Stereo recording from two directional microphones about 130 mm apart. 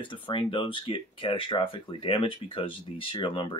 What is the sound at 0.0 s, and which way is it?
Speech, 40° left (ahead or behind).